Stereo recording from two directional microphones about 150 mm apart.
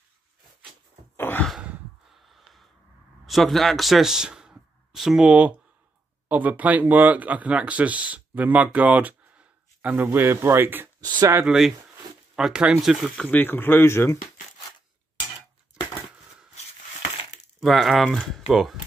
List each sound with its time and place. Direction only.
1.1 s a sound: 15° left (ahead or behind)
1.5 s a sound: 5° right (ahead or behind)
3.3 s speech: centre (ahead or behind)
11.0 s speech: 25° right (ahead or behind)
11.4 s speech: 5° right (ahead or behind); by 14.1 s 15° left (ahead or behind)
17.6 s speech: centre (ahead or behind)